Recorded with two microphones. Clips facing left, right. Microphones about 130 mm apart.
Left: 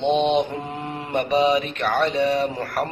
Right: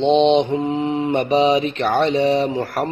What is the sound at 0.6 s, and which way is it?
Mantra, 70° right (ahead or behind).